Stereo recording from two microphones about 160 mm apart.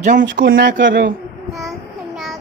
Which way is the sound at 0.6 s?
90° right.